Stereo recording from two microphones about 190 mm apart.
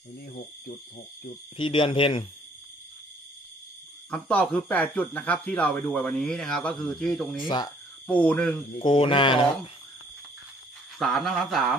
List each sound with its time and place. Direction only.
1.6 s speech: 25° left (ahead or behind)
4.1 s speech: 5° left (ahead or behind)
7.4 s speech: 25° left (ahead or behind)
8.1 s speech: 5° left (ahead or behind)
8.7 s speech: 25° left (ahead or behind)
11.0 s speech: centre (ahead or behind)